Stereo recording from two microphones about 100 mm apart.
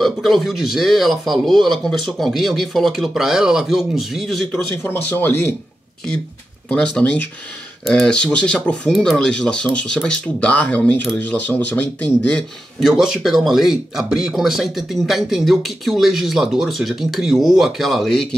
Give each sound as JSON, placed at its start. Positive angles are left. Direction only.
{"t": 0.0, "sound": "speech", "side_deg": 0}
{"t": 4.8, "sound": "speech", "side_deg": 20}
{"t": 6.7, "sound": "speech", "side_deg": 15}
{"t": 8.8, "sound": "speech", "side_deg": 0}
{"t": 12.8, "sound": "speech", "side_deg": -5}